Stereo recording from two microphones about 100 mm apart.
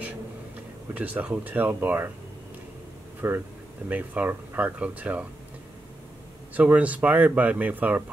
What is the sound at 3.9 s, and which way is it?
Speech, 15° right (ahead or behind).